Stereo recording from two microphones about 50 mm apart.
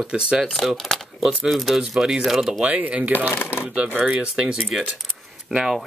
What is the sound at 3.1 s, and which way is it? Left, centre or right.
Speech, left.